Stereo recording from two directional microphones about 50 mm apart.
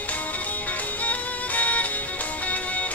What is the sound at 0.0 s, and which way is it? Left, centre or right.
Music, left.